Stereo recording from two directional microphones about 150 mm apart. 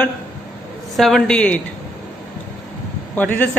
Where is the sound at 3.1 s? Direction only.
10° left (ahead or behind).